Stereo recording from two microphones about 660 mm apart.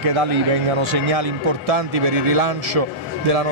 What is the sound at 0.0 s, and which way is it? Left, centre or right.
A man's voice, right.